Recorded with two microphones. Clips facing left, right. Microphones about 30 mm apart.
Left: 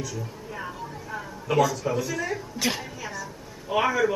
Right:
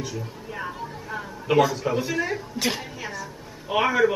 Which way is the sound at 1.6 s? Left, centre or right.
Right.